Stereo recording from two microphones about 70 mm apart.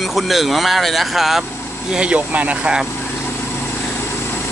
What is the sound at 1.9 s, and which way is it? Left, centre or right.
Speech, centre.